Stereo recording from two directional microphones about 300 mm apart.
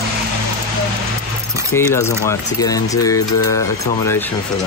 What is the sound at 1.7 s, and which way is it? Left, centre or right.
Speech, centre.